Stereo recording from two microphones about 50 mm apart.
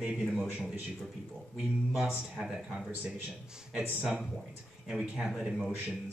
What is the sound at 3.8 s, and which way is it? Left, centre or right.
Speech, right.